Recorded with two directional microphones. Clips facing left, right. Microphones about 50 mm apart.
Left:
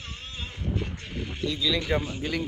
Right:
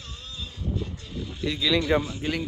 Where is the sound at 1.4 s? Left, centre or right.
Right.